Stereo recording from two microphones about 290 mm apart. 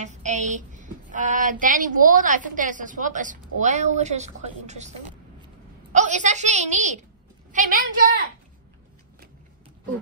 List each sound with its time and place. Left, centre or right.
0.0 s a woman's voice: right